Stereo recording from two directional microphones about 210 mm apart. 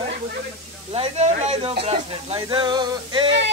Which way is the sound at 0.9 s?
30° right (ahead or behind).